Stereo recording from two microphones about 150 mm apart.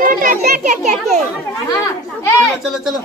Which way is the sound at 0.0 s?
65° right (ahead or behind).